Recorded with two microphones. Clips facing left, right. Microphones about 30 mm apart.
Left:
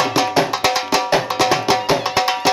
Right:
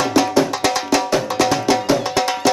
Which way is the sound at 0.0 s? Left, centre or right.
Centre.